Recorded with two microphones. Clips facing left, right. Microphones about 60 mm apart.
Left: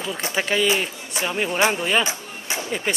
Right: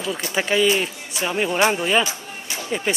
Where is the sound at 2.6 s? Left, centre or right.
Centre.